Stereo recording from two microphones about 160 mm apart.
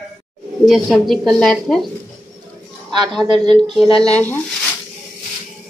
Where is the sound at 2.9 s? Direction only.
Centre (ahead or behind).